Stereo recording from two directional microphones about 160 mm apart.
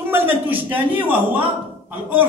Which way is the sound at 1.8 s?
10° right (ahead or behind).